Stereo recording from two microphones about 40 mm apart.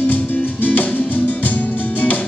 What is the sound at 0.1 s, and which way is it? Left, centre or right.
Music, left.